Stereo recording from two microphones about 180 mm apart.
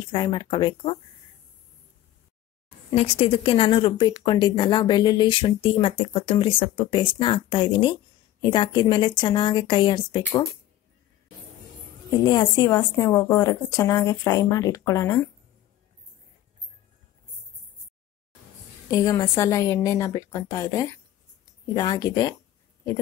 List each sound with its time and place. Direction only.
0.1 s speech: 25° left (ahead or behind)
2.9 s speech: 30° left (ahead or behind)
12.1 s speech: 20° left (ahead or behind)
18.9 s a woman's voice: 20° left (ahead or behind)